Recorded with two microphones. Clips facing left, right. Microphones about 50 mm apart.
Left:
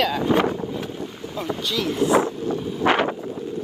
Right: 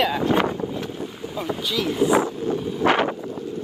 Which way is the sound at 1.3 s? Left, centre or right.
Centre.